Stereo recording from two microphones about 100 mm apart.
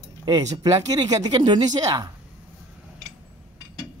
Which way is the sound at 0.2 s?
40° right (ahead or behind).